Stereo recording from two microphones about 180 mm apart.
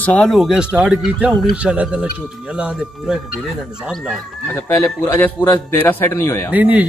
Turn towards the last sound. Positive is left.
turn(degrees=-10)  # may be behind; listen again after turning